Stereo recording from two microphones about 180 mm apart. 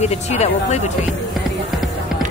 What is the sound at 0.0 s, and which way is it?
Speech, 35° left (ahead or behind).